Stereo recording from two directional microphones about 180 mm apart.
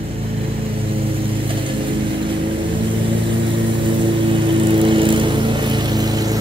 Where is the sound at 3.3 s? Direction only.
30° right (ahead or behind).